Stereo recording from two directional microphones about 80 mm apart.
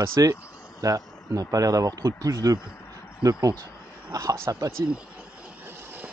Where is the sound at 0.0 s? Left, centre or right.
Right.